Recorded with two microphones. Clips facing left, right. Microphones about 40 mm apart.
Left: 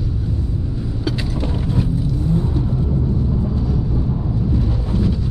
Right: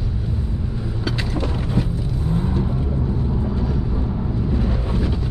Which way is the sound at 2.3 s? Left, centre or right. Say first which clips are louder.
Left 1 dB; right.